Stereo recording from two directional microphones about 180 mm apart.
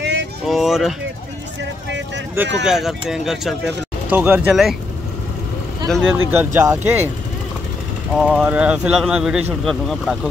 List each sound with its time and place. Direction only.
0.0 s vehicle: 75° right (ahead or behind)
0.5 s speech: centre (ahead or behind)
2.6 s speech: centre (ahead or behind)
5.9 s speech: centre (ahead or behind)
6.3 s speech: 15° right (ahead or behind)
8.1 s speech: centre (ahead or behind)